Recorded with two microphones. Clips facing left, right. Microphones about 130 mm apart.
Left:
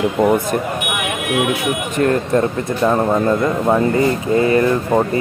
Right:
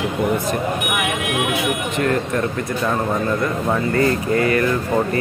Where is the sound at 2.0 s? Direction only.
35° left (ahead or behind).